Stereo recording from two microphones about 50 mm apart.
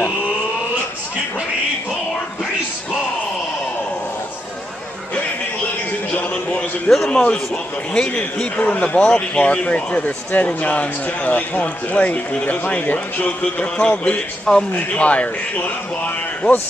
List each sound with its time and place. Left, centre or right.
7.1 s speech: left
8.2 s speech: left